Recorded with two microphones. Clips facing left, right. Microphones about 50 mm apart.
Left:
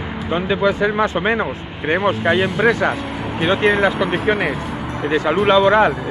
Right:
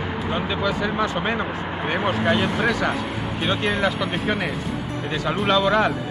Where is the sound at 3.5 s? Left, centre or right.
Left.